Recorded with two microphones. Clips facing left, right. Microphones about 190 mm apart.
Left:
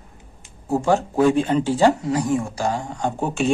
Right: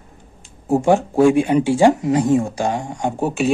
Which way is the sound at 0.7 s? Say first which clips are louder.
Right 4 dB; 15° right (ahead or behind).